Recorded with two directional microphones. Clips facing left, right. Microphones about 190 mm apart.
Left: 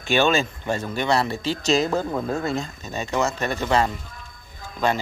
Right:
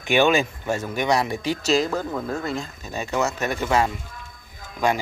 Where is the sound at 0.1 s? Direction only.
15° right (ahead or behind).